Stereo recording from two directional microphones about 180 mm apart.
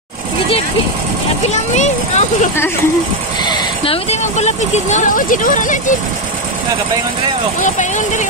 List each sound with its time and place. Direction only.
1.5 s speech: 40° left (ahead or behind)
7.6 s speech: 45° left (ahead or behind)